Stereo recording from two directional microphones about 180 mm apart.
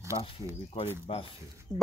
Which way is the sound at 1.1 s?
30° left (ahead or behind).